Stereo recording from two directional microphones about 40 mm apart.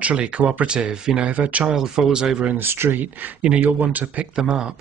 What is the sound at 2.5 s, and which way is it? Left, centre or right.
Speech, right.